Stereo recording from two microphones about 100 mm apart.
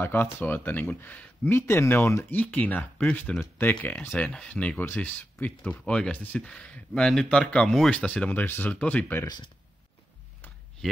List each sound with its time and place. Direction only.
0.0 s speech: 20° left (ahead or behind)
2.3 s speech: 15° left (ahead or behind)
4.1 s speech: 10° left (ahead or behind)
9.2 s speech: 45° left (ahead or behind)